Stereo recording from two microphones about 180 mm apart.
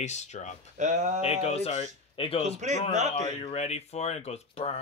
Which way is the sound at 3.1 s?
35° left (ahead or behind).